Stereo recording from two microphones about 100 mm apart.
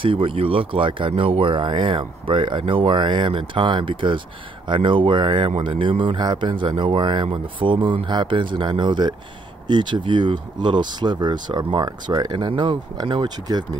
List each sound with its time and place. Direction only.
0.0 s speech: 60° right (ahead or behind); by 13.7 s 45° right (ahead or behind)